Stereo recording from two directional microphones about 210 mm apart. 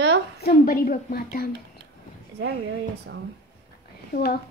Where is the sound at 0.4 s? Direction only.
45° left (ahead or behind).